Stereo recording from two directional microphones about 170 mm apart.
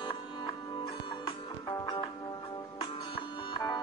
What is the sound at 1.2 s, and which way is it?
Music, 25° left (ahead or behind).